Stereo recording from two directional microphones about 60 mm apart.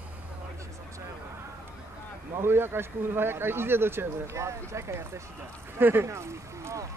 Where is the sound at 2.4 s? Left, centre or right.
Right.